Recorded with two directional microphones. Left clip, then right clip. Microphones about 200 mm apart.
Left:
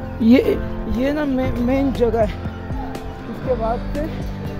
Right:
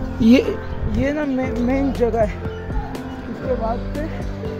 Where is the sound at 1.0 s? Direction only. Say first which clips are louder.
Left 1 dB; 10° left (ahead or behind).